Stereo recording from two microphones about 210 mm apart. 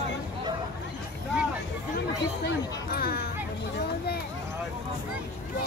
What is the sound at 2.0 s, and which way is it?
Speech, 50° left (ahead or behind).